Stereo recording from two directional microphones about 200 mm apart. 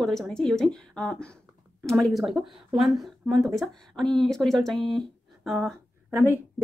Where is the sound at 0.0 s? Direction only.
Centre (ahead or behind).